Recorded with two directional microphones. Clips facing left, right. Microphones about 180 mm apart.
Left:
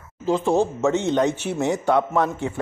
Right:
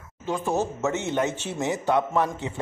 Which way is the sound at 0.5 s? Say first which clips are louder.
Left 5 dB; 15° left (ahead or behind).